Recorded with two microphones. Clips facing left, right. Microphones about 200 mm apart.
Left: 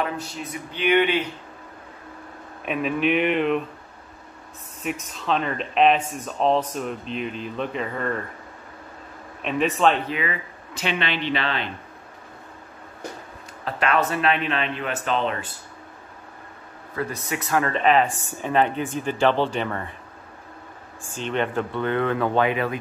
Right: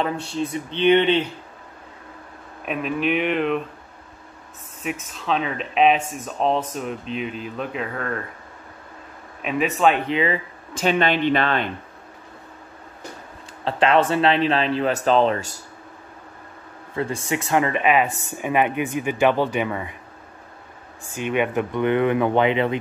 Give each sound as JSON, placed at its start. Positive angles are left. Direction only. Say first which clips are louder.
{"t": 0.0, "sound": "speech", "louder": "right 4 dB", "side_deg": -30}
{"t": 2.6, "sound": "speech", "louder": "left 1 dB", "side_deg": 0}
{"t": 4.8, "sound": "speech", "louder": "even", "side_deg": 0}
{"t": 9.4, "sound": "speech", "louder": "right 1 dB", "side_deg": -5}
{"t": 10.0, "sound": "speech", "louder": "right 6 dB", "side_deg": -25}
{"t": 10.8, "sound": "speech", "louder": "right 7 dB", "side_deg": -45}
{"t": 13.7, "sound": "speech", "louder": "right 5 dB", "side_deg": -30}
{"t": 16.9, "sound": "speech", "louder": "right 4 dB", "side_deg": -25}
{"t": 21.1, "sound": "speech", "louder": "right 3 dB", "side_deg": -10}